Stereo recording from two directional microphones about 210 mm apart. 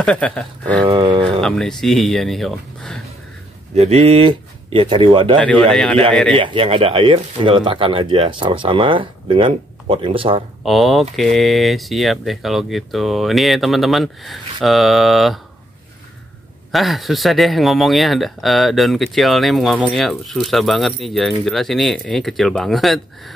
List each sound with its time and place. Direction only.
0.0 s speech: 5° left (ahead or behind)
0.8 s speech: 25° right (ahead or behind)
1.4 s speech: centre (ahead or behind)
3.7 s speech: 30° right (ahead or behind)
5.7 s speech: centre (ahead or behind)
6.3 s speech: 25° right (ahead or behind)
10.6 s speech: centre (ahead or behind)
16.7 s speech: centre (ahead or behind)